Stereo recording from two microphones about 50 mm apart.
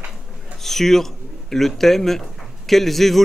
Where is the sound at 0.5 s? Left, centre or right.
Centre.